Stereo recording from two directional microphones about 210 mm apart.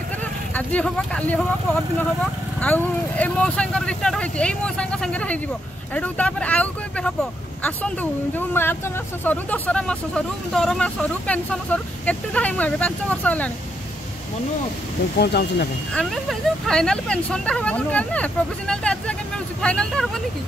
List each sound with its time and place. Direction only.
0.2 s speech: 5° left (ahead or behind)
2.6 s speech: 10° left (ahead or behind)
15.1 s speech: 50° left (ahead or behind)
15.9 s speech: 5° left (ahead or behind)